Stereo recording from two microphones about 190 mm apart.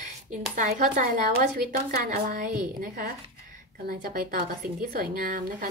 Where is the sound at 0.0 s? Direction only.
40° right (ahead or behind).